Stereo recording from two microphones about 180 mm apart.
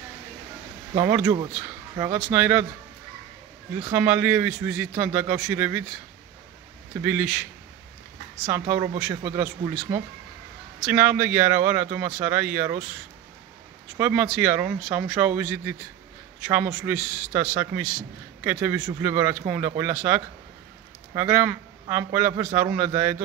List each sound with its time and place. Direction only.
0.9 s a man's voice: 15° right (ahead or behind)
3.9 s a man's voice: 10° right (ahead or behind)
7.0 s a man's voice: 10° right (ahead or behind)
8.5 s speech: 15° right (ahead or behind)
9.0 s a man's voice: 10° right (ahead or behind)
13.9 s a man's voice: 5° right (ahead or behind)